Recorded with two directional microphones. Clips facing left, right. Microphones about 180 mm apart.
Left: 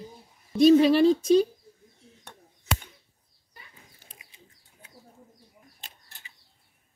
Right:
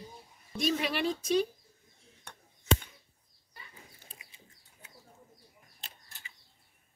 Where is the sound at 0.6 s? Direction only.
30° left (ahead or behind).